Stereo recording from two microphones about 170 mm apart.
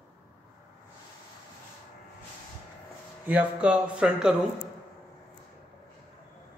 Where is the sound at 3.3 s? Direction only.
5° right (ahead or behind).